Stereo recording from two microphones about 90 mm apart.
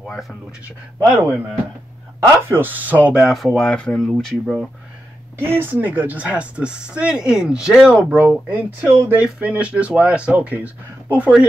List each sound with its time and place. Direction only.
0.0 s speech: centre (ahead or behind)
2.4 s speech: 25° right (ahead or behind)
3.2 s speech: centre (ahead or behind)
5.4 s speech: 25° right (ahead or behind); by 8.2 s 10° right (ahead or behind)
8.2 s speech: 20° right (ahead or behind)